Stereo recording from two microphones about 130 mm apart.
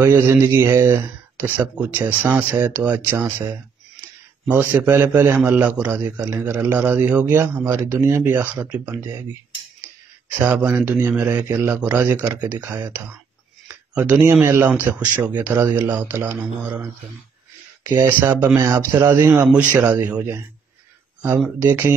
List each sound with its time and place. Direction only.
0.0 s speech: 15° right (ahead or behind)
10.3 s speech: 20° right (ahead or behind)
10.6 s speech: 5° right (ahead or behind)
10.9 s speech: 15° right (ahead or behind)
17.9 s speech: 20° right (ahead or behind)